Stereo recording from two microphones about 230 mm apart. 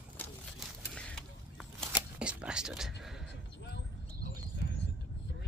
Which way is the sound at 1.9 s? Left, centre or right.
Centre.